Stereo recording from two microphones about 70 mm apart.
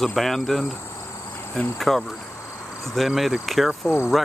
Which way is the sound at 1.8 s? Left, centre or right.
Centre.